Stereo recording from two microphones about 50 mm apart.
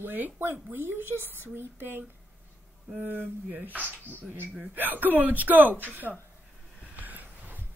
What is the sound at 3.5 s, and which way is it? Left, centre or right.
Speech, right.